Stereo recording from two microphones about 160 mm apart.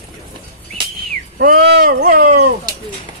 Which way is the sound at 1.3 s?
70° right (ahead or behind).